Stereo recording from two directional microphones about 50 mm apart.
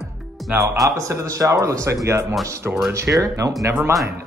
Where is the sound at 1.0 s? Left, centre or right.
Right.